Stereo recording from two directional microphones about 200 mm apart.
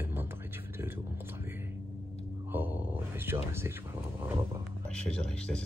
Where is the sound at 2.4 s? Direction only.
10° right (ahead or behind).